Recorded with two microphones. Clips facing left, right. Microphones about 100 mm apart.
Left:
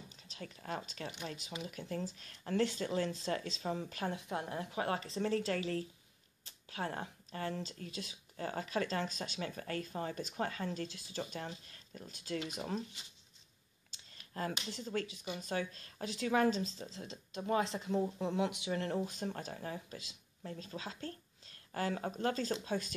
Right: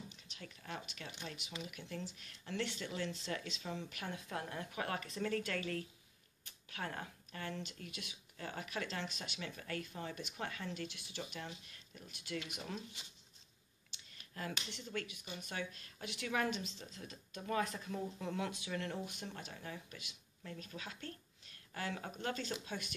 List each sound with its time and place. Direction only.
0.1 s speech: 40° left (ahead or behind)
13.9 s speech: 35° left (ahead or behind)
18.7 s speech: 35° left (ahead or behind)